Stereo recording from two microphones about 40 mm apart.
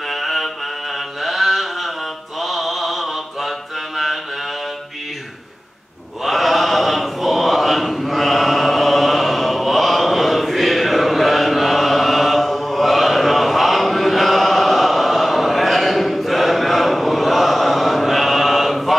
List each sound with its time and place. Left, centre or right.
0.1 s a sound: centre
0.9 s mantra: centre
6.2 s chant: centre